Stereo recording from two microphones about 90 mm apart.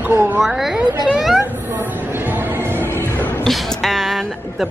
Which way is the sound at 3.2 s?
20° left (ahead or behind).